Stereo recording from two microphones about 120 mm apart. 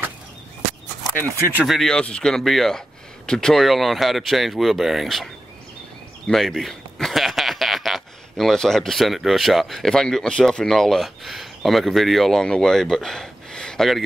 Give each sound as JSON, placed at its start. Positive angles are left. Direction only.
{"t": 1.6, "sound": "a man's voice", "side_deg": 0}